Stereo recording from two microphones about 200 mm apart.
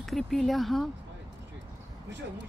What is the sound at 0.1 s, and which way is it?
Speech, centre (ahead or behind).